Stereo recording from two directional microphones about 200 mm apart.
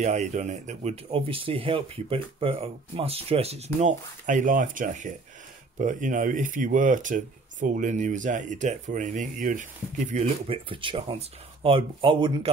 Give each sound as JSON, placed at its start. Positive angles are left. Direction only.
{"t": 0.0, "sound": "speech", "side_deg": -35}